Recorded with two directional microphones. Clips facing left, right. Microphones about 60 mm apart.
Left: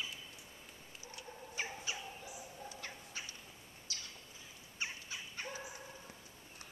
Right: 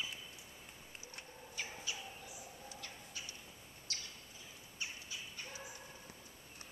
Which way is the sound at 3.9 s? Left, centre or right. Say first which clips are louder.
Right 1 dB; right.